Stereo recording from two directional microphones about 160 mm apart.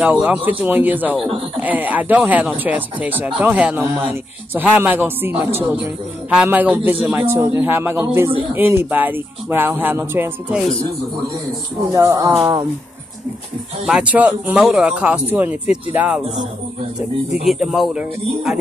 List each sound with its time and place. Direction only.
0.0 s speech: 10° right (ahead or behind)
11.9 s speech: 20° right (ahead or behind)
13.8 s speech: 5° right (ahead or behind)
17.5 s speech: centre (ahead or behind)